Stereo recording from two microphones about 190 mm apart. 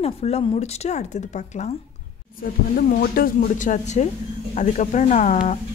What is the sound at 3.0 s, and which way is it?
Speech, 50° left (ahead or behind).